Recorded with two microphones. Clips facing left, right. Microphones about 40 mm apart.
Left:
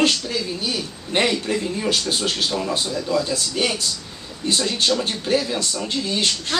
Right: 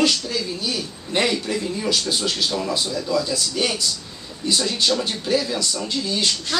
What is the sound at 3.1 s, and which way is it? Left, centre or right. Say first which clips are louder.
Speech: left 1 dB; left.